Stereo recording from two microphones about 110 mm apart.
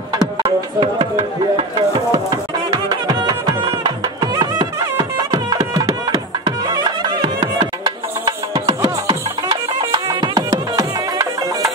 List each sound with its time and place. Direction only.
0.7 s speech: 55° right (ahead or behind)
2.1 s music: 35° right (ahead or behind)